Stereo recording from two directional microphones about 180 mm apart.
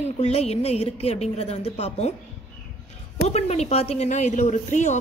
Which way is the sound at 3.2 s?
35° left (ahead or behind).